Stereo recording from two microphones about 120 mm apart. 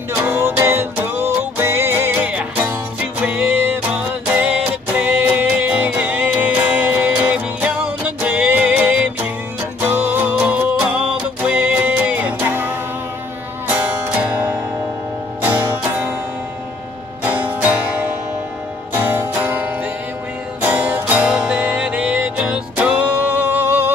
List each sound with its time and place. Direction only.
0.2 s music: 20° right (ahead or behind)
17.2 s music: 15° right (ahead or behind)
18.9 s music: 15° right (ahead or behind)